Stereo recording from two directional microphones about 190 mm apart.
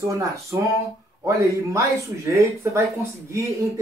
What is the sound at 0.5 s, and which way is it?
Speech, 15° right (ahead or behind).